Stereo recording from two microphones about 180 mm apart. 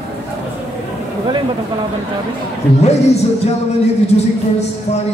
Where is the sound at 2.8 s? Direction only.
35° left (ahead or behind).